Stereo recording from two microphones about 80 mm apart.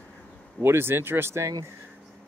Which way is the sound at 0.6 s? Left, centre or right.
Right.